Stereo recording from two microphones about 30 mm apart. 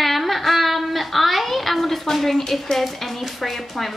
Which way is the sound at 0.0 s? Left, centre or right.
Centre.